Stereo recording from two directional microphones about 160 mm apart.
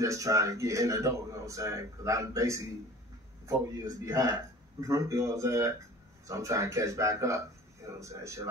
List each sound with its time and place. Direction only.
0.0 s speech: 20° right (ahead or behind)
3.8 s speech: 20° right (ahead or behind)